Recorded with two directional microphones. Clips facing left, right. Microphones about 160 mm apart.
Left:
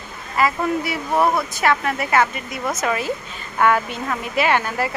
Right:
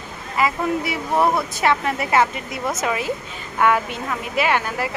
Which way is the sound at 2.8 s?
15° right (ahead or behind).